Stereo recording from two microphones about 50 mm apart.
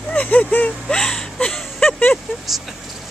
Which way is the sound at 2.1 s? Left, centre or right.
Centre.